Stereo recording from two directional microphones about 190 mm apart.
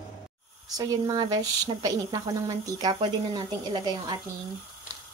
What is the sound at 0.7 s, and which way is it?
Speech, 20° right (ahead or behind).